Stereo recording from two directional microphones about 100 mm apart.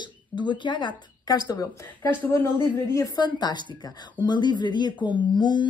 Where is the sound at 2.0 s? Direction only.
20° left (ahead or behind).